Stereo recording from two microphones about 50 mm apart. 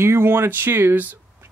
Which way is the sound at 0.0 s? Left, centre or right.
Right.